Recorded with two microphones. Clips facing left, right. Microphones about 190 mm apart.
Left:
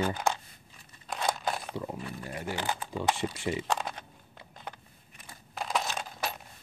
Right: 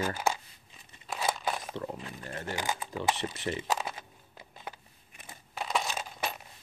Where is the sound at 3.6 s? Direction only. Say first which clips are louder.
Left 1 dB; 5° right (ahead or behind).